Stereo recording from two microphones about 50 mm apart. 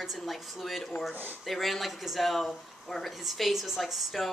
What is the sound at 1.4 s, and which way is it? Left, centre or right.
Speech, centre.